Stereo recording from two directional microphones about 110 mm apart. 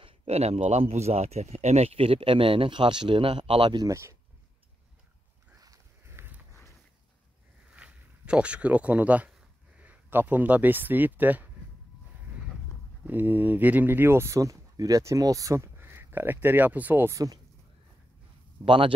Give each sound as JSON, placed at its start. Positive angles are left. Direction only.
{"t": 0.0, "sound": "a man's voice", "side_deg": -60}
{"t": 3.8, "sound": "speech", "side_deg": -30}
{"t": 5.6, "sound": "a sound", "side_deg": -30}
{"t": 7.7, "sound": "speech", "side_deg": -10}
{"t": 13.0, "sound": "speech", "side_deg": -15}
{"t": 17.1, "sound": "speech", "side_deg": -30}
{"t": 18.7, "sound": "speech", "side_deg": -50}